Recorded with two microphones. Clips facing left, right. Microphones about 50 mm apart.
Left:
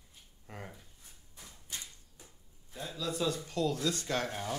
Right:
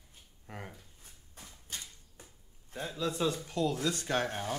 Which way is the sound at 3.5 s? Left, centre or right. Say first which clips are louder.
Right 1 dB; right.